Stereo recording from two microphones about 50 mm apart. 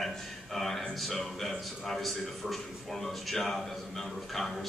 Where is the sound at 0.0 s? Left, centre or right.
Centre.